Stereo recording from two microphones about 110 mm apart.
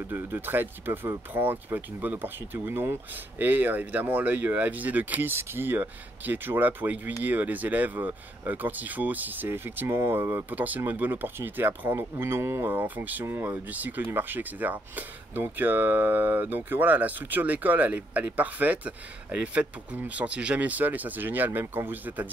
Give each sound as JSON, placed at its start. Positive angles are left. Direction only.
{"t": 0.1, "sound": "speech", "side_deg": -20}